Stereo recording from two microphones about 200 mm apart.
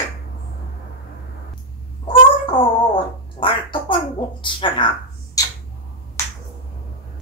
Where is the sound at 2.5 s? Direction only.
25° left (ahead or behind).